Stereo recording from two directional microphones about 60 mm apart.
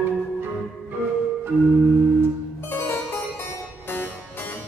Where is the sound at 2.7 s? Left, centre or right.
Left.